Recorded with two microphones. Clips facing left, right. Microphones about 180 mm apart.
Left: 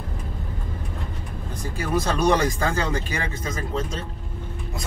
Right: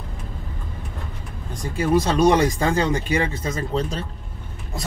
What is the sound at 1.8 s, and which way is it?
Speech, 25° right (ahead or behind).